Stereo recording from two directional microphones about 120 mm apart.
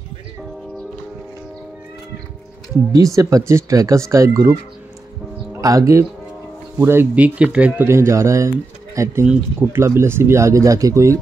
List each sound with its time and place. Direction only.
3.2 s speech: 25° right (ahead or behind); by 7.8 s 10° right (ahead or behind)
7.8 s speech: 20° right (ahead or behind)
9.2 s speech: 15° right (ahead or behind)